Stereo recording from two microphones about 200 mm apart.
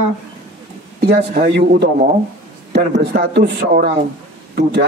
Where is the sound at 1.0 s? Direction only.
50° right (ahead or behind).